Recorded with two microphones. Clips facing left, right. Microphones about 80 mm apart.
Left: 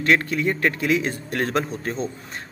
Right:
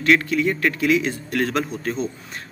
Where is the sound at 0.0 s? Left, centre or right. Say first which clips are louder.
Right 2 dB; left.